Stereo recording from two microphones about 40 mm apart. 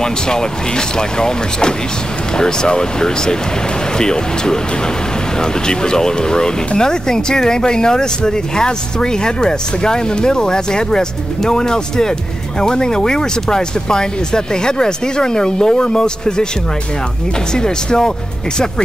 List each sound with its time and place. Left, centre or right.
0.0 s speech: centre
17.5 s speech: centre